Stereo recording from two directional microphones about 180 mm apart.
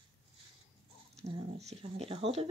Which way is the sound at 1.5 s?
35° right (ahead or behind).